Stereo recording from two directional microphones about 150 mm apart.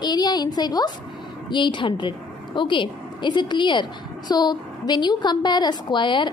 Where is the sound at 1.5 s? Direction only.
30° left (ahead or behind).